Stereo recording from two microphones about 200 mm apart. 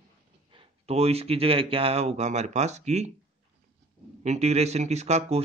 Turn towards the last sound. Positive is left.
turn(degrees=-35)  # may be behind; listen again after turning